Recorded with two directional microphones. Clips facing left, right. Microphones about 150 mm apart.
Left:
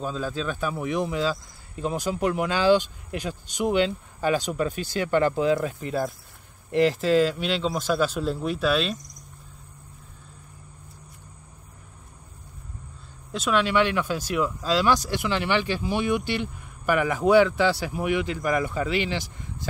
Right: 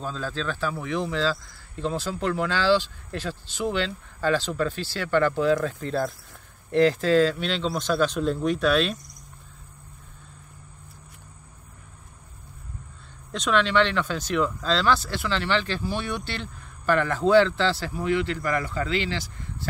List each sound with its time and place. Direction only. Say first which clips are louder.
0.0 s speech: left 2 dB; 10° left (ahead or behind)
13.3 s speech: even; 5° left (ahead or behind)